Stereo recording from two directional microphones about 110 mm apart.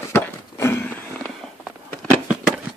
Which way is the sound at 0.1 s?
20° left (ahead or behind).